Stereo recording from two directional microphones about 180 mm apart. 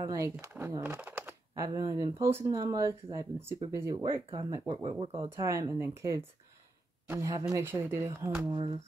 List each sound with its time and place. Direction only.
0.0 s speech: 15° right (ahead or behind)
1.7 s speech: 20° right (ahead or behind)
5.0 s speech: 30° right (ahead or behind)
5.4 s speech: 15° right (ahead or behind)
8.5 s speech: 30° right (ahead or behind)